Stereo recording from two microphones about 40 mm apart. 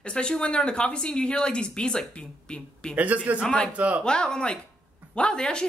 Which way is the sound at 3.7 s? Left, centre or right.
Right.